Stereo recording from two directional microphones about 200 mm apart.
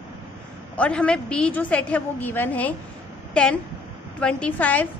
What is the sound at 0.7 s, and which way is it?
A woman's voice, 5° left (ahead or behind).